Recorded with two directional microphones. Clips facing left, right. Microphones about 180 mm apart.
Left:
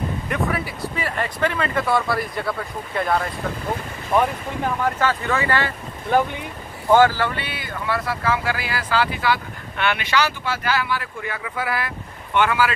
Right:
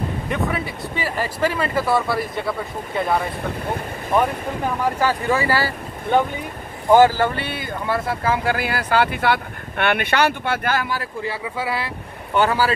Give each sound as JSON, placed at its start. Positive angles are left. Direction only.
{"t": 0.3, "sound": "speech", "side_deg": 0}
{"t": 4.9, "sound": "speech", "side_deg": -10}
{"t": 7.0, "sound": "speech", "side_deg": -45}
{"t": 7.8, "sound": "speech", "side_deg": -25}
{"t": 8.5, "sound": "speech", "side_deg": -55}
{"t": 12.4, "sound": "speech", "side_deg": -35}